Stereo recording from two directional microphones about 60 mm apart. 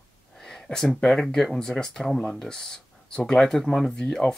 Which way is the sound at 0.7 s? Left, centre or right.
Left.